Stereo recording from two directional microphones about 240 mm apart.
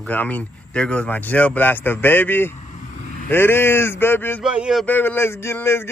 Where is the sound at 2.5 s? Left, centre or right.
Left.